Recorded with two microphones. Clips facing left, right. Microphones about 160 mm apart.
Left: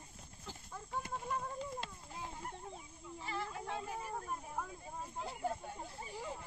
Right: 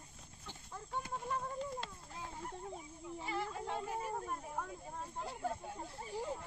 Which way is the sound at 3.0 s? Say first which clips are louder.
Right 2 dB; 25° right (ahead or behind).